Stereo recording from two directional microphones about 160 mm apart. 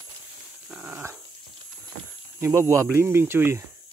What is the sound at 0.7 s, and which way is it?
Dog, 10° right (ahead or behind).